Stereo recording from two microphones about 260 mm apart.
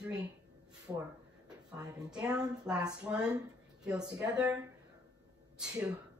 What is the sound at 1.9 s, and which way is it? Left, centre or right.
Speech, centre.